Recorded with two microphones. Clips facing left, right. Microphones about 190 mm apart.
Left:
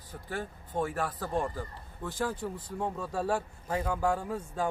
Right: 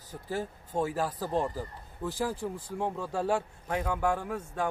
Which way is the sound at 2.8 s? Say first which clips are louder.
Right 1 dB; centre (ahead or behind).